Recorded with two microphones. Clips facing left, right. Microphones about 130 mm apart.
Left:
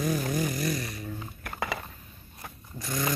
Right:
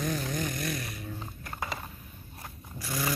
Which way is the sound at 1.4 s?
70° left (ahead or behind).